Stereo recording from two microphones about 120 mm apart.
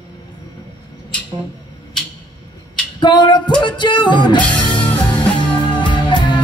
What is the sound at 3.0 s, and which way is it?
Music, 40° left (ahead or behind).